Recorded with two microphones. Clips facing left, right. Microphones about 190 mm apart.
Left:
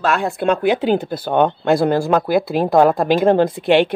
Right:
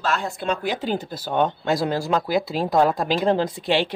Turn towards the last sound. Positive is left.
turn(degrees=60)  # may be behind; listen again after turning